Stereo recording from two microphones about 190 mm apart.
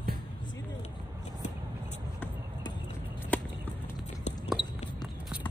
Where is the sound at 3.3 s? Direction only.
10° left (ahead or behind).